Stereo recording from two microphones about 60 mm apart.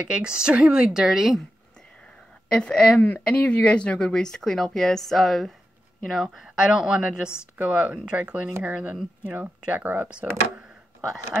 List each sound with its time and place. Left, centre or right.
0.1 s a woman's voice: centre
1.0 s speech: centre
2.5 s speech: centre
3.0 s a woman's voice: left; by 10.0 s right